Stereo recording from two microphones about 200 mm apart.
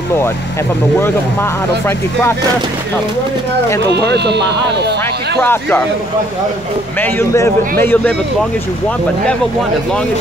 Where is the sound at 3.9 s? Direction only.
55° right (ahead or behind).